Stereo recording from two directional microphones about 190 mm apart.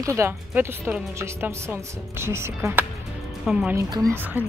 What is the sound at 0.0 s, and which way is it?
Speech, 15° right (ahead or behind).